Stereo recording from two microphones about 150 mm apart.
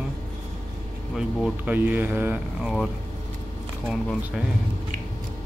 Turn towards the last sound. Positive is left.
turn(degrees=-5)  # may be behind; listen again after turning